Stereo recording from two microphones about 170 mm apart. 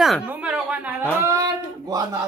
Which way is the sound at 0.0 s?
5° right (ahead or behind).